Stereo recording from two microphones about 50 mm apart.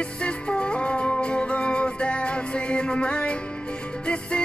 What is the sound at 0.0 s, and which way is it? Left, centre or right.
Music, left.